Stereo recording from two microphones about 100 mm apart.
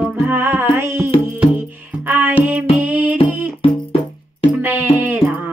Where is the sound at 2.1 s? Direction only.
15° right (ahead or behind).